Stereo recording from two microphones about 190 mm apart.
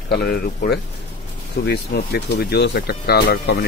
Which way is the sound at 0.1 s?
60° left (ahead or behind).